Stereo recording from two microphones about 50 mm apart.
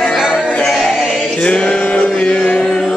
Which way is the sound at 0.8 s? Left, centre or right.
Centre.